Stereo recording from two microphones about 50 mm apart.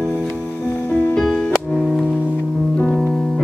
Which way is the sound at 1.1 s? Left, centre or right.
Centre.